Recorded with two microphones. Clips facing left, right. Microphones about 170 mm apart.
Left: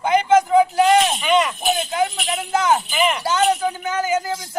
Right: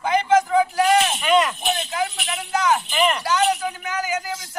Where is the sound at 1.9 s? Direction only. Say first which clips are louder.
Left 4 dB; 30° left (ahead or behind).